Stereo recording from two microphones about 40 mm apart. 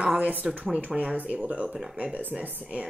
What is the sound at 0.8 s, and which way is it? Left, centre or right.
A woman's voice, right.